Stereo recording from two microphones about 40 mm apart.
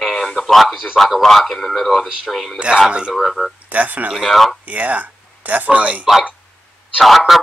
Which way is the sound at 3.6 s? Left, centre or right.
Right.